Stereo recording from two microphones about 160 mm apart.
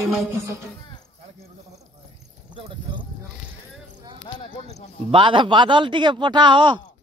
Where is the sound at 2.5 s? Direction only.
30° right (ahead or behind).